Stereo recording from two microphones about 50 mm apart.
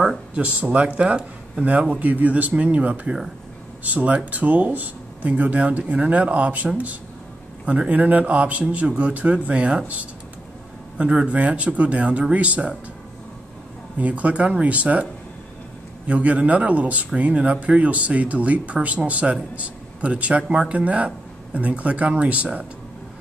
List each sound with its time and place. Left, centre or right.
0.3 s speech: right
13.9 s speech: right
16.1 s speech: right